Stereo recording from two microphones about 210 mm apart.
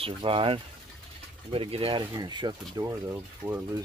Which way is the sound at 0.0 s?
25° right (ahead or behind).